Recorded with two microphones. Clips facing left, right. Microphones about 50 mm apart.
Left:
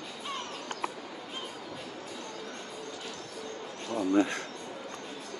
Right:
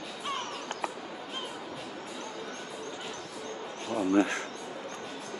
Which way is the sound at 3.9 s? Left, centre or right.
Centre.